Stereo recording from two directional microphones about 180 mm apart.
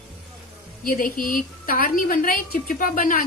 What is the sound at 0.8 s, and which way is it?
A woman's voice, 50° left (ahead or behind).